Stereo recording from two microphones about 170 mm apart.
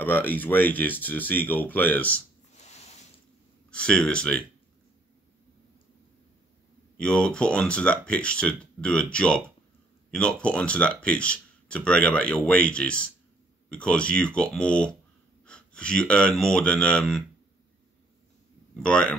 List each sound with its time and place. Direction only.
0.0 s speech: 10° left (ahead or behind)
2.5 s a sound: 45° left (ahead or behind)
3.7 s speech: 5° left (ahead or behind)
7.0 s speech: 5° left (ahead or behind)
18.8 s speech: 5° left (ahead or behind)